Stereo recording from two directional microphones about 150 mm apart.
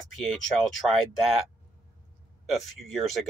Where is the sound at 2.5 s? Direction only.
Centre (ahead or behind).